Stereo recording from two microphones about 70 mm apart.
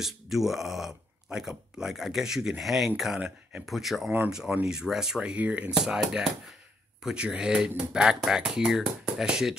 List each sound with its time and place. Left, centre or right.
0.0 s speech: centre